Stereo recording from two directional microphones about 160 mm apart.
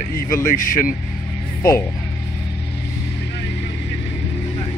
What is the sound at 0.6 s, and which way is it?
Speech, 60° left (ahead or behind).